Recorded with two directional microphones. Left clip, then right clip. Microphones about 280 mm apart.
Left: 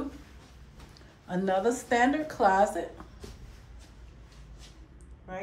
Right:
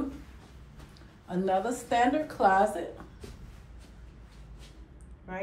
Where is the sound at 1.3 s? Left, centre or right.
Left.